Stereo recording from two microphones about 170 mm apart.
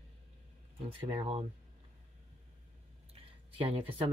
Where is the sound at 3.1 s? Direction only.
35° right (ahead or behind).